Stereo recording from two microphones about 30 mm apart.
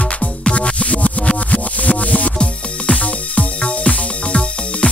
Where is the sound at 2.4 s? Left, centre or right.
Left.